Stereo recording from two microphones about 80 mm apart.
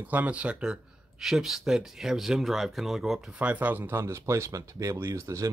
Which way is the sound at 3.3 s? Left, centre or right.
Centre.